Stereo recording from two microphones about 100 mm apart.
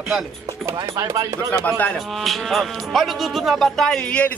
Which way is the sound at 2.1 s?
Centre (ahead or behind).